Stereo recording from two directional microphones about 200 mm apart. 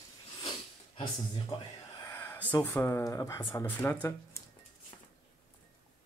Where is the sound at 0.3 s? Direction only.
20° left (ahead or behind).